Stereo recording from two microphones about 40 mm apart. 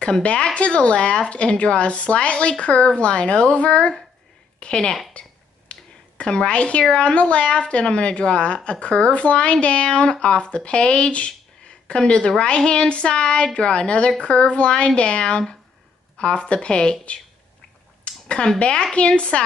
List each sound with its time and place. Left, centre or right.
0.0 s a woman's voice: left
18.0 s a sound: left
18.6 s a woman's voice: left